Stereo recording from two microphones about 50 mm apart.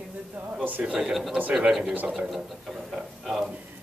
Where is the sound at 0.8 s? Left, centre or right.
Right.